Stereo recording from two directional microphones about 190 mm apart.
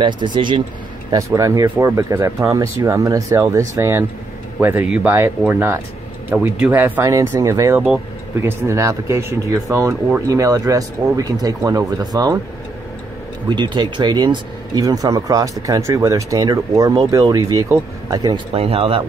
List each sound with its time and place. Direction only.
0.0 s speech: 25° right (ahead or behind)
13.5 s speech: 25° right (ahead or behind)